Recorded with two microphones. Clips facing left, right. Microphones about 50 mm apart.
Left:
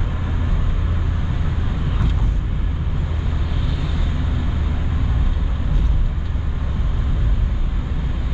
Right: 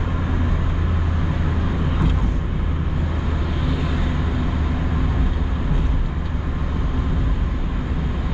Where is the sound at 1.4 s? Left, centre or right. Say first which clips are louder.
Right 3 dB; right.